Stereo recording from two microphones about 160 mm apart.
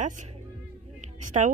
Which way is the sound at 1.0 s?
50° right (ahead or behind).